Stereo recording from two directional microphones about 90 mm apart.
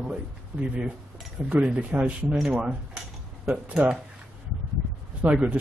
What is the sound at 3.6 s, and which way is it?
Speech, 10° right (ahead or behind).